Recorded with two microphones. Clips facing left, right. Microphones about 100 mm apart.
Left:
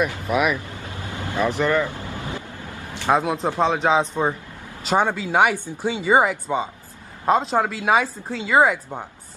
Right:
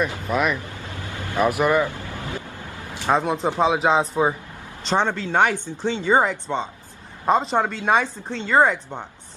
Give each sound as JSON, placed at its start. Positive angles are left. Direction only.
{"t": 0.3, "sound": "speech", "side_deg": 5}
{"t": 0.9, "sound": "vehicle", "side_deg": 20}
{"t": 1.4, "sound": "speech", "side_deg": -15}
{"t": 1.9, "sound": "vehicle", "side_deg": 20}
{"t": 3.1, "sound": "speech", "side_deg": 0}
{"t": 4.8, "sound": "speech", "side_deg": 10}